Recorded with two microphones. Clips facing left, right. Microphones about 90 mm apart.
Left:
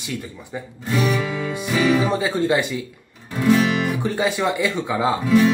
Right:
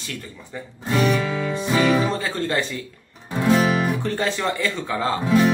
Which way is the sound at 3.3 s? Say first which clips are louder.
Left 1 dB; 30° right (ahead or behind).